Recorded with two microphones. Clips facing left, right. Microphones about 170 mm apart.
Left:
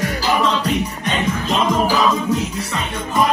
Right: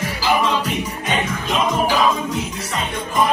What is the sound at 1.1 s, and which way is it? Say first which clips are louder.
Music: left 1 dB; 35° left (ahead or behind).